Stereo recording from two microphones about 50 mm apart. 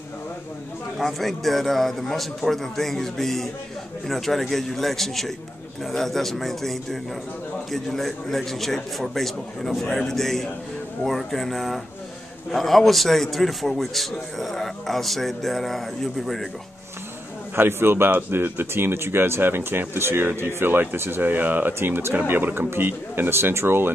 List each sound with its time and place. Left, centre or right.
0.9 s a man's voice: centre
17.6 s speech: right
21.7 s speech: right